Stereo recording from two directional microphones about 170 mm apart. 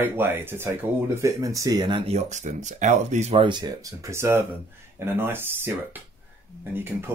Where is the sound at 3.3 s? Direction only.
30° right (ahead or behind).